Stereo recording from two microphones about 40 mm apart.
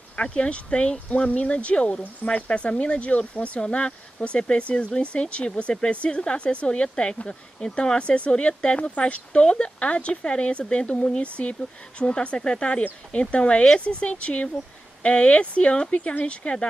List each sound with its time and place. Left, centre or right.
0.2 s speech: left